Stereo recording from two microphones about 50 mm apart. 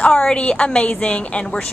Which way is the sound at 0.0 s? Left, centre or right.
Centre.